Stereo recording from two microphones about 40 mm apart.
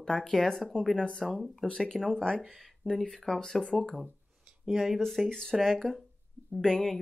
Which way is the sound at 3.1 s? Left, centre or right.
Centre.